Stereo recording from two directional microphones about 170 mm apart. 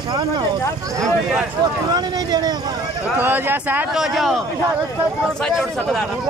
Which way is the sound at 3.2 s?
10° right (ahead or behind).